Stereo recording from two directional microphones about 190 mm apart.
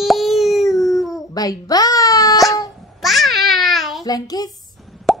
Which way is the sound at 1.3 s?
20° left (ahead or behind).